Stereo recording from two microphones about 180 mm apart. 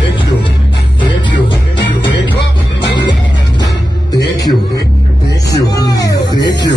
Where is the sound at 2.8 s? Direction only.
75° left (ahead or behind).